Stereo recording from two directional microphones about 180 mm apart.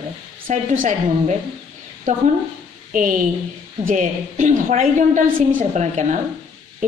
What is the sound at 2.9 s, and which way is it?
A woman's voice, 50° right (ahead or behind).